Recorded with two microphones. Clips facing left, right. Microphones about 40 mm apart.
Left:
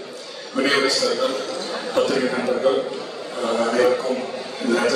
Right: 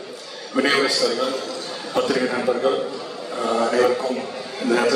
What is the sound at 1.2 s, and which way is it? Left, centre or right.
Speech, left.